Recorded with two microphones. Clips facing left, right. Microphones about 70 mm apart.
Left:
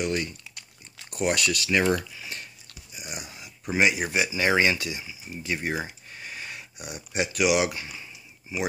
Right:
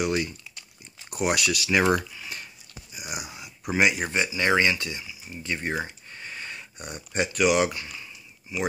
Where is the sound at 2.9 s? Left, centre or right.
Centre.